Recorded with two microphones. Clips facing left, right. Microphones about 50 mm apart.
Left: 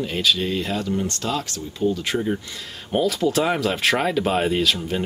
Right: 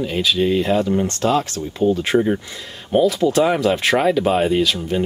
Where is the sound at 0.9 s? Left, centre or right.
Right.